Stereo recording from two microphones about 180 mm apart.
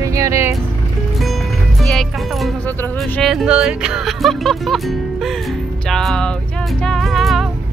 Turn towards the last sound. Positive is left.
turn(degrees=0)  # may be behind; listen again after turning